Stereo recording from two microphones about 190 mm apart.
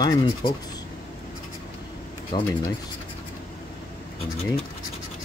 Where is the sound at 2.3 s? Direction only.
25° left (ahead or behind).